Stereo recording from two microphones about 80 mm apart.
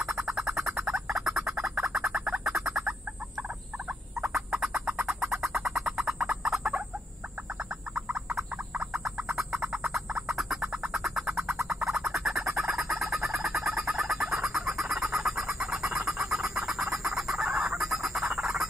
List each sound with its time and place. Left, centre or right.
0.0 s a sound: centre
4.2 s turkey: centre
5.0 s a sound: centre
5.9 s fowl: centre
7.9 s frog: centre
10.9 s a sound: centre
11.7 s music: centre
12.5 s fowl: centre
12.9 s bird: centre
15.6 s fowl: centre